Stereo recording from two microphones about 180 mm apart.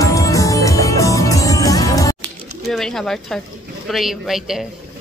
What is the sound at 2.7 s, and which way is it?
A woman's voice, centre (ahead or behind).